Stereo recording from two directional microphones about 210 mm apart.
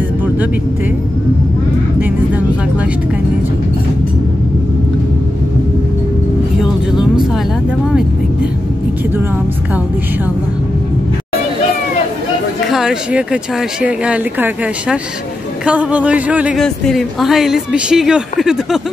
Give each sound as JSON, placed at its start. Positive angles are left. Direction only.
{"t": 2.0, "sound": "vehicle", "side_deg": -10}
{"t": 6.6, "sound": "vehicle", "side_deg": 0}
{"t": 12.6, "sound": "a woman's voice", "side_deg": 0}